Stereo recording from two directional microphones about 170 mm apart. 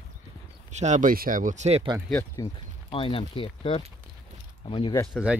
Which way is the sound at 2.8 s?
30° left (ahead or behind).